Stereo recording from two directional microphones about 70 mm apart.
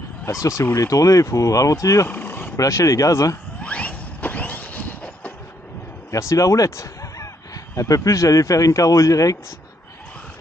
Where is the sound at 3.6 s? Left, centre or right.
Centre.